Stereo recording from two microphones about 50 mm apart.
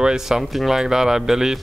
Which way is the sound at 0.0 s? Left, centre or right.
Centre.